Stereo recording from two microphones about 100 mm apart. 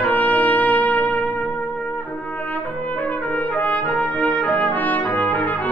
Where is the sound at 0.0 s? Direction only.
15° left (ahead or behind).